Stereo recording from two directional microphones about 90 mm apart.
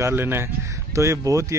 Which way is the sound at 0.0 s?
25° right (ahead or behind).